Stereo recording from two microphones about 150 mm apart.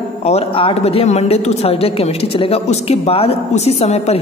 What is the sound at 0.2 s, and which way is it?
A woman's voice, 45° left (ahead or behind).